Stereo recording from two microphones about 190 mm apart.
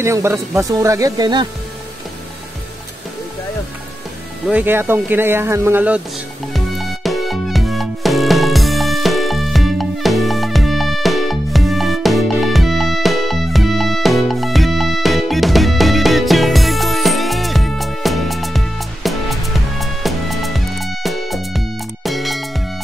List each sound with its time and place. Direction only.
0.0 s speech: 15° right (ahead or behind)
4.5 s speech: 10° right (ahead or behind)
6.5 s music: centre (ahead or behind)